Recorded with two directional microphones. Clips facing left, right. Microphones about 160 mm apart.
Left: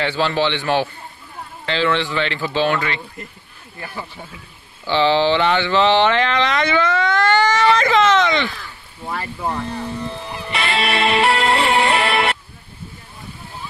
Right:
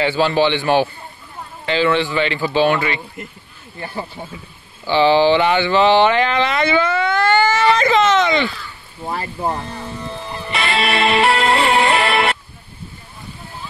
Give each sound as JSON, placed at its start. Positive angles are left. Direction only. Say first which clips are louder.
{"t": 0.0, "sound": "speech", "louder": "right 3 dB", "side_deg": -10}
{"t": 3.8, "sound": "speech", "louder": "right 4 dB", "side_deg": -25}
{"t": 4.8, "sound": "speech", "louder": "right 3 dB", "side_deg": -10}
{"t": 9.0, "sound": "speech", "louder": "right 2 dB", "side_deg": -30}
{"t": 10.8, "sound": "music", "louder": "right 1 dB", "side_deg": -90}